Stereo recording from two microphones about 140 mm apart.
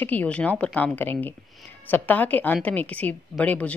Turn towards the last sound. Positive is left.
turn(degrees=10)  # may be behind; listen again after turning